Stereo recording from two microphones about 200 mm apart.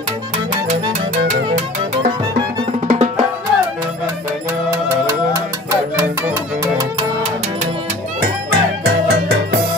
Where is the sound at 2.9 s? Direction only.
30° right (ahead or behind).